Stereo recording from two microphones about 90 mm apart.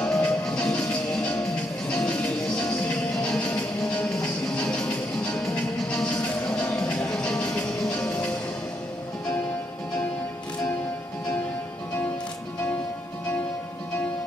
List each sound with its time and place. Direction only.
0.0 s music: 10° left (ahead or behind)
4.6 s music: 10° left (ahead or behind)